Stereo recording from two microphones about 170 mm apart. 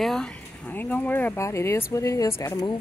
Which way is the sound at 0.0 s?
5° left (ahead or behind).